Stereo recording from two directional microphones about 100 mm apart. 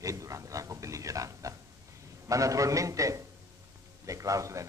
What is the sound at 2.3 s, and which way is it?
Speech, 35° right (ahead or behind).